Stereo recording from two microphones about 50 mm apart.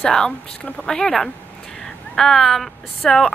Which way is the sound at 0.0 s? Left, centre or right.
Centre.